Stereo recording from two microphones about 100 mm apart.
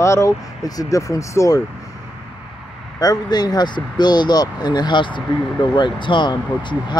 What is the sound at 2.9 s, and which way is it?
Speech, 40° left (ahead or behind).